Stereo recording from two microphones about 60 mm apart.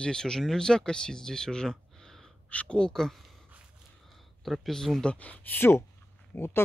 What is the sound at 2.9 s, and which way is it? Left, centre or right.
Speech, centre.